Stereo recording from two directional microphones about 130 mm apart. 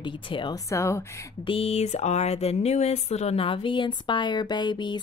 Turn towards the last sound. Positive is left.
turn(degrees=35)  # may be behind; listen again after turning